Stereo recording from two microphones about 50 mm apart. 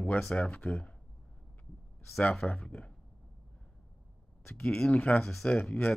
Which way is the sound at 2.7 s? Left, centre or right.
Left.